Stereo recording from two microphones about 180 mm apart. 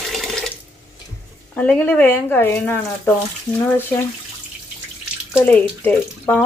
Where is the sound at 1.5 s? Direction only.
10° left (ahead or behind).